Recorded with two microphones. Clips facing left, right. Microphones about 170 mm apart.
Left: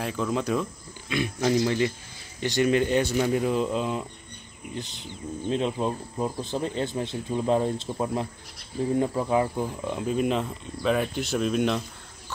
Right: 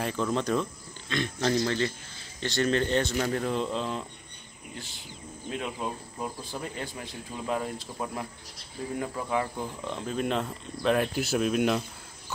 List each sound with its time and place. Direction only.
0.0 s speech: centre (ahead or behind)
4.7 s speech: 20° left (ahead or behind)
9.8 s speech: 10° left (ahead or behind)